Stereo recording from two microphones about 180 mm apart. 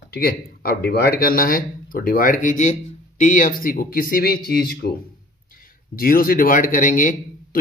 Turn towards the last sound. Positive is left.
turn(degrees=45)  # may be behind; listen again after turning